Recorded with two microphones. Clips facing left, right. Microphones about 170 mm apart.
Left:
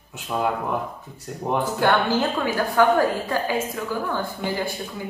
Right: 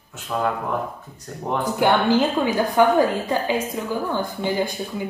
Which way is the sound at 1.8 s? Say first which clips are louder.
Right 4 dB; 15° right (ahead or behind).